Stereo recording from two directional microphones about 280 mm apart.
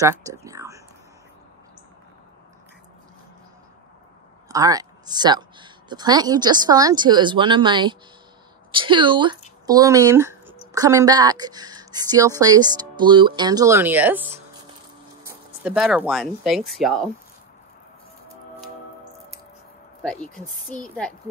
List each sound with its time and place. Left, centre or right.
0.0 s speech: centre
4.5 s speech: centre
20.0 s a woman's voice: centre